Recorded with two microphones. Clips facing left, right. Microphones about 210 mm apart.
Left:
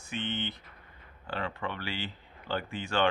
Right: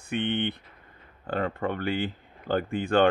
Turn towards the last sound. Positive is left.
turn(degrees=-55)  # may be behind; listen again after turning